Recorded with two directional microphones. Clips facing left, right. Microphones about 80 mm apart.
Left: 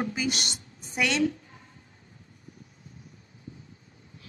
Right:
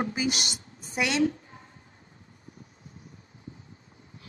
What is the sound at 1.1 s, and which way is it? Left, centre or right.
Speech, right.